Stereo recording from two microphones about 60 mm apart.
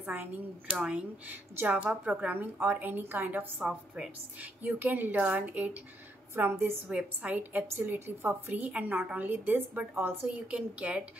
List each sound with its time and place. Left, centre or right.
0.0 s speech: right
0.8 s a woman's voice: centre
6.3 s a woman's voice: right
6.9 s a woman's voice: right
10.2 s a woman's voice: right